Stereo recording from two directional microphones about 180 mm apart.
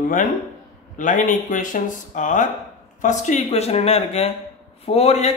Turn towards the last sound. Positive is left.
turn(degrees=35)  # may be behind; listen again after turning